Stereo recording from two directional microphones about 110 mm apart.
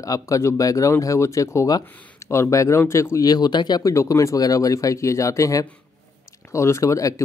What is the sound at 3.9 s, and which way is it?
Speech, 30° left (ahead or behind).